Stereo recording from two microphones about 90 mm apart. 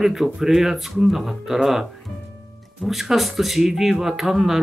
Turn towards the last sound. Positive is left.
turn(degrees=-5)  # may be behind; listen again after turning